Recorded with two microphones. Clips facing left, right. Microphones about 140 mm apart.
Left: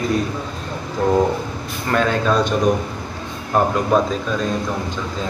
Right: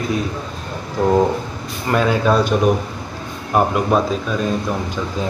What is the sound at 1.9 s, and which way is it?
Speech, 10° right (ahead or behind).